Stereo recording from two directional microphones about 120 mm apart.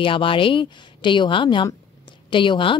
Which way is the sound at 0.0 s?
45° left (ahead or behind).